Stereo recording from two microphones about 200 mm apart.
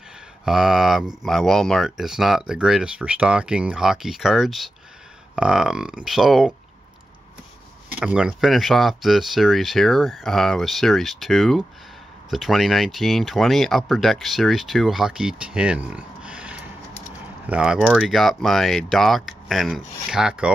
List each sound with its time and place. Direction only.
0.5 s speech: centre (ahead or behind)
8.0 s speech: 5° right (ahead or behind)